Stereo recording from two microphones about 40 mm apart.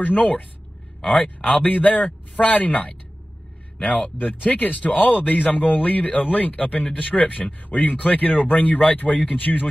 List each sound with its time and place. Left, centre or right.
0.0 s speech: left